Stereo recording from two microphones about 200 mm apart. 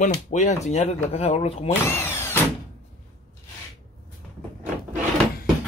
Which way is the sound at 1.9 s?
10° left (ahead or behind).